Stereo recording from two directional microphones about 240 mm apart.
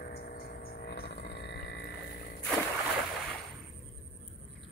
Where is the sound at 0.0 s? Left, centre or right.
Left.